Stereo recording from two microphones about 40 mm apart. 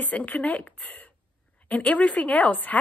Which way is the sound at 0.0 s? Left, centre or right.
Left.